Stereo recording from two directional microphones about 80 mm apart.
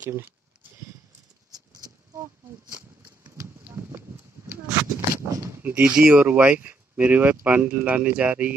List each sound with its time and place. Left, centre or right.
3.3 s clip-clop: right
4.5 s speech: right
5.8 s speech: centre